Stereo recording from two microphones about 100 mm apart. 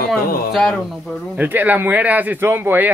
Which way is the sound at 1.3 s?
20° right (ahead or behind).